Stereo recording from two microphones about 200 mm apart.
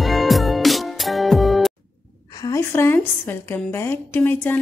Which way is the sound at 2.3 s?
20° left (ahead or behind).